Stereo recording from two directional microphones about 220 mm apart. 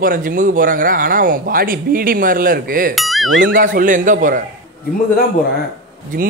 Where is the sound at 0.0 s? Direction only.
40° right (ahead or behind).